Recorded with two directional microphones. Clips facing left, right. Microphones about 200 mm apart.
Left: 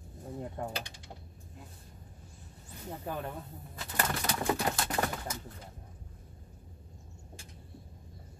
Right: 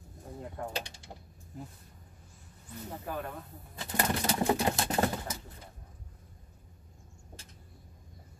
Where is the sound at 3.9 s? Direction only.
25° right (ahead or behind).